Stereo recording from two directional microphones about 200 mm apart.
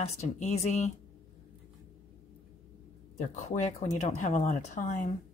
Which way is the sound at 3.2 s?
35° left (ahead or behind).